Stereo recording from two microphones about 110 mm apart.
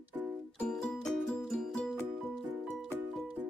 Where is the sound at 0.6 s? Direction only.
5° left (ahead or behind).